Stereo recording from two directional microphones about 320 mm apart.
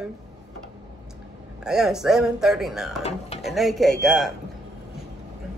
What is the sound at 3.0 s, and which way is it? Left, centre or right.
Speech, centre.